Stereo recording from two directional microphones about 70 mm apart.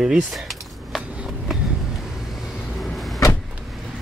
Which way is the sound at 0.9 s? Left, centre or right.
Centre.